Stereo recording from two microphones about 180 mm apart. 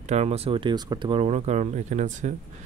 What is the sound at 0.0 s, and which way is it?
Speech, 35° right (ahead or behind).